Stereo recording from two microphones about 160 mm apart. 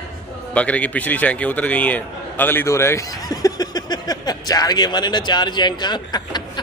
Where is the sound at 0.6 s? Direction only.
10° left (ahead or behind).